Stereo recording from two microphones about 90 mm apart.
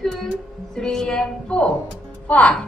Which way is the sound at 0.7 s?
5° left (ahead or behind).